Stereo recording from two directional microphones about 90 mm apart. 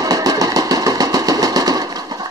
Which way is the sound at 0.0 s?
40° right (ahead or behind).